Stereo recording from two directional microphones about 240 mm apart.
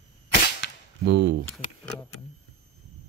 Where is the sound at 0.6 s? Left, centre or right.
Left.